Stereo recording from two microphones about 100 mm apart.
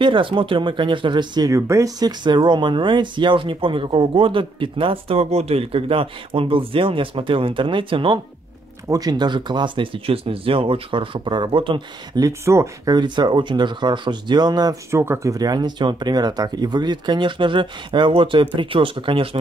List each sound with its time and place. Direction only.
0.0 s speech: 55° right (ahead or behind)
1.5 s speech: 30° right (ahead or behind); by 8.2 s 60° right (ahead or behind)
8.8 s speech: 35° right (ahead or behind)
10.0 s speech: 70° right (ahead or behind)
12.2 s speech: 30° right (ahead or behind)
12.9 s speech: 45° right (ahead or behind)
14.9 s speech: 25° right (ahead or behind)
15.3 s speech: 40° right (ahead or behind); by 19.2 s 60° right (ahead or behind)